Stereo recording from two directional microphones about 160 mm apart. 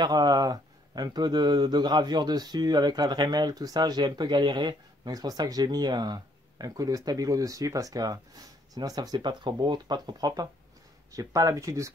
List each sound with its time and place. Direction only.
0.0 s speech: 25° right (ahead or behind)